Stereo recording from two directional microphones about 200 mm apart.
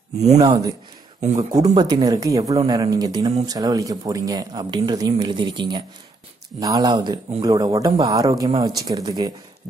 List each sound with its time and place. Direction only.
0.4 s speech: 20° right (ahead or behind)